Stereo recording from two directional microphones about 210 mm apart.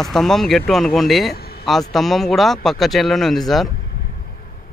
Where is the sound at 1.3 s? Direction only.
50° left (ahead or behind).